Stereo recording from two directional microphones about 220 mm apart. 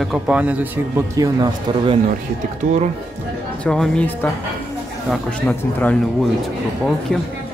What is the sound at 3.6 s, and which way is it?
Speech, 5° left (ahead or behind).